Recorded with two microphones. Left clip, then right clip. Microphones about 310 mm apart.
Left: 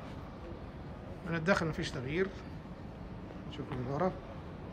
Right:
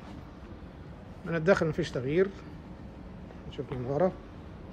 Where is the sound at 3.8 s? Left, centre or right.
Centre.